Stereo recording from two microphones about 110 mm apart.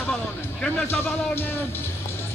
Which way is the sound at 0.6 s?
15° left (ahead or behind).